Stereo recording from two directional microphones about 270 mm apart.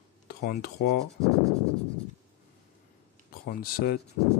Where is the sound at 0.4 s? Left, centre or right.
Left.